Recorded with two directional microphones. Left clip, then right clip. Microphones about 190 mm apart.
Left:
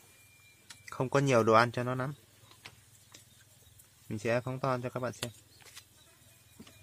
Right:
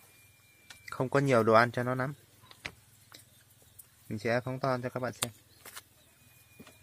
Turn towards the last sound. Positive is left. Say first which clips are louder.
# right 3 dB
turn(degrees=-35)  # may be behind; listen again after turning